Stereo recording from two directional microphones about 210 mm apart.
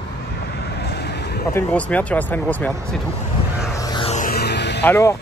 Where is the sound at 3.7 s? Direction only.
20° left (ahead or behind).